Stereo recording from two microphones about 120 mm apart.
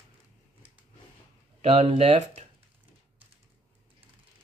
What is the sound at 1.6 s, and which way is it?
Speech, 55° right (ahead or behind).